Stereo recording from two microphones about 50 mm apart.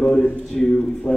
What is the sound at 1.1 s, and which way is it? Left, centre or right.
Speech, centre.